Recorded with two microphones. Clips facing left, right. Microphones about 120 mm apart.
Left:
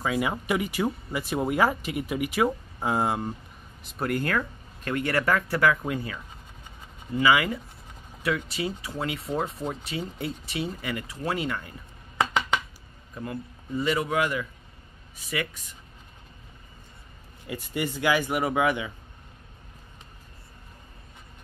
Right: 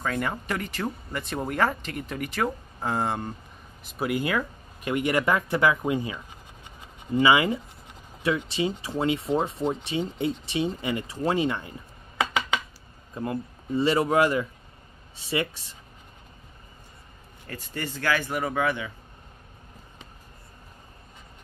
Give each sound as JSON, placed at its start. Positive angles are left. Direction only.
{"t": 0.0, "sound": "speech", "side_deg": 5}
{"t": 3.8, "sound": "speech", "side_deg": -5}
{"t": 13.1, "sound": "speech", "side_deg": -25}
{"t": 17.5, "sound": "speech", "side_deg": 15}